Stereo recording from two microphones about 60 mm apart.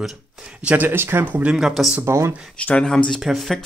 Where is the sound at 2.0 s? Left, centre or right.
Right.